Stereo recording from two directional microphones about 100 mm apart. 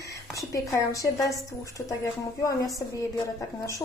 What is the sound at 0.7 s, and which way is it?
Speech, 35° left (ahead or behind).